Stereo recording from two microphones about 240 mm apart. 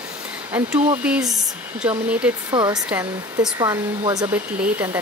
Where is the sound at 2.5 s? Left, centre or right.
Centre.